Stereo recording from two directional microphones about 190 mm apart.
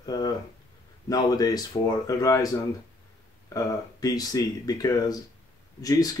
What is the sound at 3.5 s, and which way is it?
Speech, 20° left (ahead or behind).